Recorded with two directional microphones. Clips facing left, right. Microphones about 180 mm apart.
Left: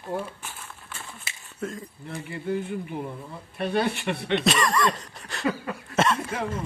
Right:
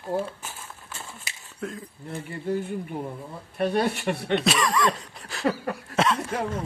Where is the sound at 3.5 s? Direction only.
40° right (ahead or behind).